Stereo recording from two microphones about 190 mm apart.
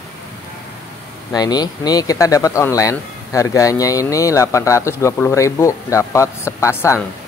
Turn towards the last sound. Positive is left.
turn(degrees=10)  # may be behind; listen again after turning